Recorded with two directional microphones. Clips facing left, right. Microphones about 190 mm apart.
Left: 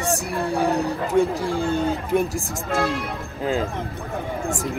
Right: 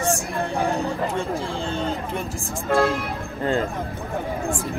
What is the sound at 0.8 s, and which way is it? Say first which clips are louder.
Speech: left 5 dB; 15° left (ahead or behind).